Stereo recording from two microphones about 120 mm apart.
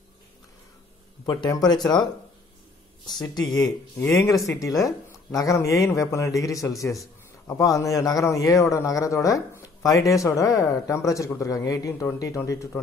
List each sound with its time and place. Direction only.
1.2 s speech: 30° left (ahead or behind)
4.0 s speech: 20° left (ahead or behind)